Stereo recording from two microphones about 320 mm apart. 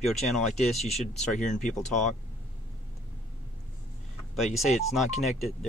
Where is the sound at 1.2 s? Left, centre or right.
Left.